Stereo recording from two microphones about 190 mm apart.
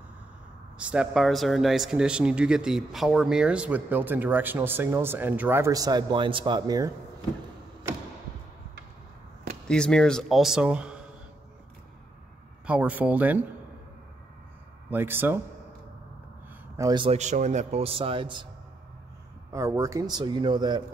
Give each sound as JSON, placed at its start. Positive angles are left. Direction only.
{"t": 0.7, "sound": "speech", "side_deg": -5}
{"t": 9.7, "sound": "speech", "side_deg": 5}
{"t": 12.6, "sound": "speech", "side_deg": -5}
{"t": 14.9, "sound": "speech", "side_deg": -10}
{"t": 16.7, "sound": "a man's voice", "side_deg": -20}
{"t": 19.5, "sound": "a man's voice", "side_deg": -15}